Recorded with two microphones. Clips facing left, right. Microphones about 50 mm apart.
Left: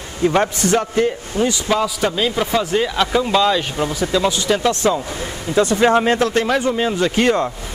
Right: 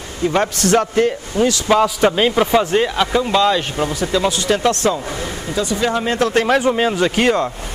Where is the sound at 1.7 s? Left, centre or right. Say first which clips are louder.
Right 4 dB; centre.